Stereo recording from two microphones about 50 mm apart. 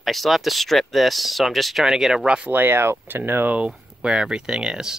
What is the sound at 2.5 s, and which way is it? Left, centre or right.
Speech, right.